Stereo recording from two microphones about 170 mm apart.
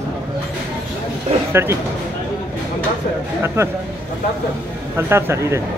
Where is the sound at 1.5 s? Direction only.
15° right (ahead or behind).